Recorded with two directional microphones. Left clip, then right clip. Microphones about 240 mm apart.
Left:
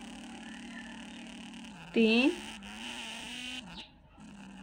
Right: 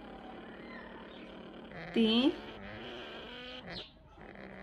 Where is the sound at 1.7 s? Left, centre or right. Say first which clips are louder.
Left 3 dB; centre.